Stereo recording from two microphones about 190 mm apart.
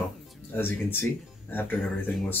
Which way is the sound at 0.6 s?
10° left (ahead or behind).